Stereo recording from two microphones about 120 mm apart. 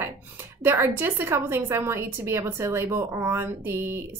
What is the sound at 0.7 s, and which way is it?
A woman's voice, 20° right (ahead or behind).